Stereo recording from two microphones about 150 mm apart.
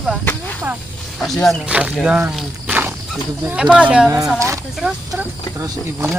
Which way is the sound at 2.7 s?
10° right (ahead or behind).